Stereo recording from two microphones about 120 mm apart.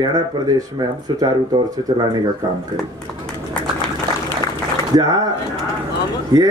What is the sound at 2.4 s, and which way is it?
Speech, 35° right (ahead or behind).